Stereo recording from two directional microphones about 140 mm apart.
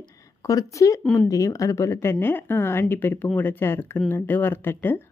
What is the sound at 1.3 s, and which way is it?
Speech, 25° left (ahead or behind).